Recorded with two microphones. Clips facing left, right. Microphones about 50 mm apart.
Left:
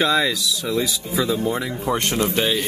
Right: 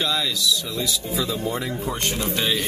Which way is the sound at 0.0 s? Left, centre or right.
Left.